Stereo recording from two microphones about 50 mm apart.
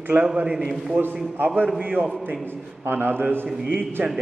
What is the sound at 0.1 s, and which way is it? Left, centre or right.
Speech, right.